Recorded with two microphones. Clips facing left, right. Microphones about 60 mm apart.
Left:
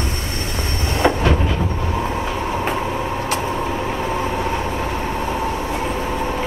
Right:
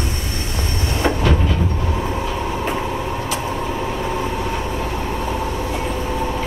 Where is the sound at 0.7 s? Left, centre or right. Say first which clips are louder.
Left 1 dB; left.